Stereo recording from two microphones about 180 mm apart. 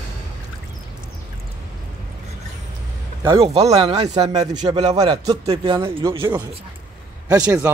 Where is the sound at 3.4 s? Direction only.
35° right (ahead or behind).